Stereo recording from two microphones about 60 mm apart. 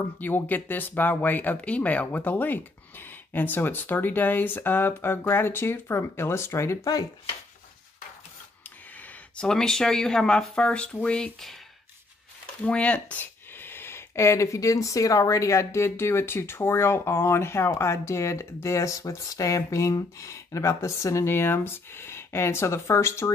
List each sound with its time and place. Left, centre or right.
0.2 s speech: left
9.4 s speech: centre
12.6 s speech: left